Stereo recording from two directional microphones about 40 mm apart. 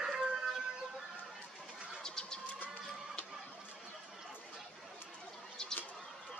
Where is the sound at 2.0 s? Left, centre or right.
Centre.